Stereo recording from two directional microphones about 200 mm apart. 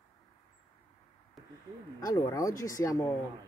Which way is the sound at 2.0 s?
15° left (ahead or behind).